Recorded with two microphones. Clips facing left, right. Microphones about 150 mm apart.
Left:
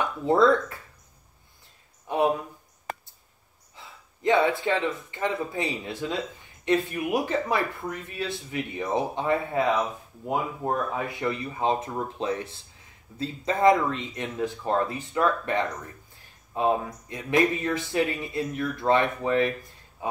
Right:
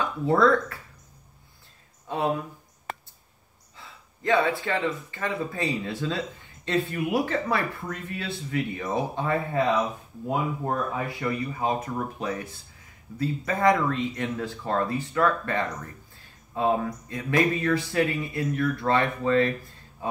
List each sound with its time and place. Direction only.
0.0 s speech: 20° left (ahead or behind)
2.0 s speech: 15° left (ahead or behind)
3.7 s speech: 20° left (ahead or behind)